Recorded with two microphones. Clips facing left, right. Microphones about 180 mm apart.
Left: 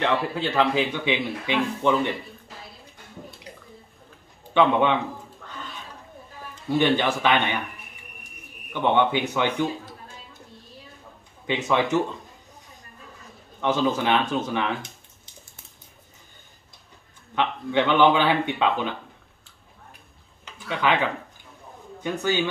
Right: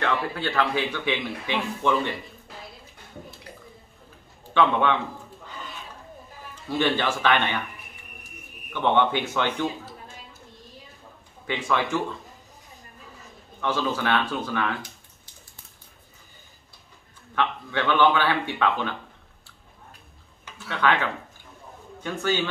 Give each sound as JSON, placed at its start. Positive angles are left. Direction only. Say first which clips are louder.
{"t": 0.0, "sound": "speech", "louder": "left 2 dB", "side_deg": 20}
{"t": 4.6, "sound": "speech", "louder": "left 2 dB", "side_deg": 15}
{"t": 6.8, "sound": "speech", "louder": "left 2 dB", "side_deg": 15}
{"t": 8.7, "sound": "speech", "louder": "left 1 dB", "side_deg": 15}
{"t": 11.4, "sound": "speech", "louder": "left 3 dB", "side_deg": 20}
{"t": 13.6, "sound": "speech", "louder": "left 4 dB", "side_deg": 20}
{"t": 17.4, "sound": "speech", "louder": "left 3 dB", "side_deg": 20}
{"t": 20.5, "sound": "speech", "louder": "left 1 dB", "side_deg": 15}